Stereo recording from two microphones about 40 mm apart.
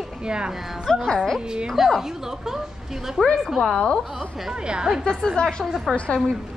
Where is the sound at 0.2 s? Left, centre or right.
Right.